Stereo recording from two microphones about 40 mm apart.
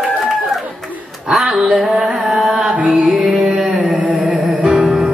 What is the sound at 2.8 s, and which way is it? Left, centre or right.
Music, centre.